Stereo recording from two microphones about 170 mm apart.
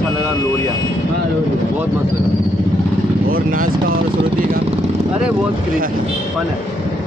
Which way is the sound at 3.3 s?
55° right (ahead or behind).